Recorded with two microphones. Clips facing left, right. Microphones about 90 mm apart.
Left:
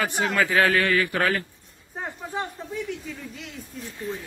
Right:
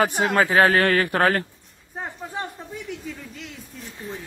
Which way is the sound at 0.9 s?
45° right (ahead or behind).